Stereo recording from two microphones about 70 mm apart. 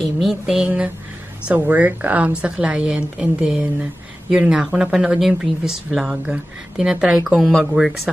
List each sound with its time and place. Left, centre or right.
0.0 s speech: centre
1.5 s a woman's voice: right; by 8.1 s centre